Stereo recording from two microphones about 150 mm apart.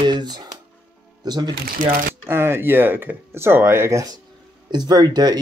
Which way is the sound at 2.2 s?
15° right (ahead or behind).